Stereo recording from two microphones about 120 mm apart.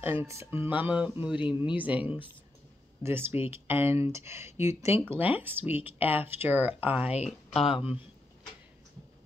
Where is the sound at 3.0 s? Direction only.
20° right (ahead or behind).